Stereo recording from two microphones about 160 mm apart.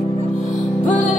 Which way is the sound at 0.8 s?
55° left (ahead or behind).